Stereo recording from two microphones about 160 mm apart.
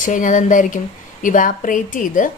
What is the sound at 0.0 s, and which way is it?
A woman's voice, 55° left (ahead or behind).